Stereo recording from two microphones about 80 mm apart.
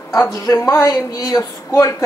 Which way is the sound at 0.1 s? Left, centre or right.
Left.